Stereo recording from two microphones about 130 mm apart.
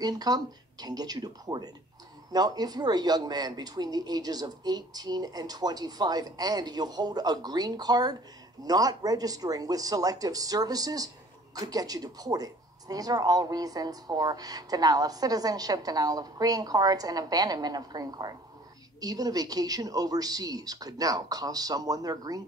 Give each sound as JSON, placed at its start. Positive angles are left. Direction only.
{"t": 0.0, "sound": "a woman's voice", "side_deg": -30}